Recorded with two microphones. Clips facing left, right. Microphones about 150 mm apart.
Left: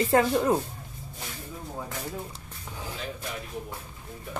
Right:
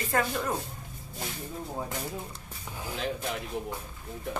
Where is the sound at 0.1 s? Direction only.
25° left (ahead or behind).